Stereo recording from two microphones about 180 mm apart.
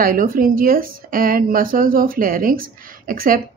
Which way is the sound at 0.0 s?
50° right (ahead or behind).